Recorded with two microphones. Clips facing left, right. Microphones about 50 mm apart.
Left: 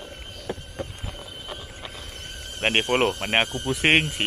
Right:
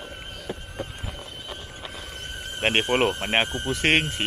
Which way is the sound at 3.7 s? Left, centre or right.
Centre.